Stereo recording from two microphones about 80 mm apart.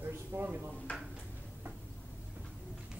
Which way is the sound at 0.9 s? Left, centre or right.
Centre.